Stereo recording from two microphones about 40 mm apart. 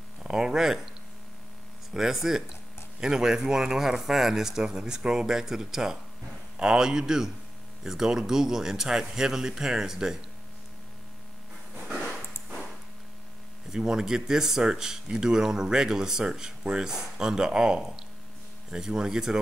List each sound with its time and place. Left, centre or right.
0.2 s speech: centre
2.0 s speech: centre
13.7 s speech: centre